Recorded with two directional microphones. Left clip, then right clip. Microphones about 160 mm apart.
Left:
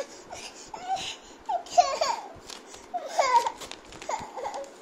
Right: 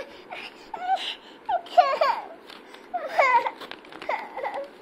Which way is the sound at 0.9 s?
30° right (ahead or behind).